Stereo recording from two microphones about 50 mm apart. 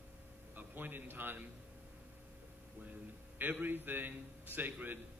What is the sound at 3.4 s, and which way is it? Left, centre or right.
A man's voice, right.